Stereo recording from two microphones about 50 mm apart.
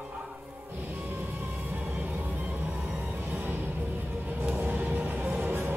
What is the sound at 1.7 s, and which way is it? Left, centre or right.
Music, right.